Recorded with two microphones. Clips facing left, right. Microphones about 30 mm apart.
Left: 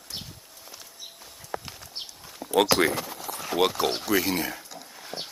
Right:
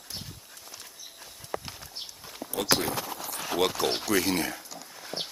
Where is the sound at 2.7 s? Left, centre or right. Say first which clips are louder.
Left 6 dB; left.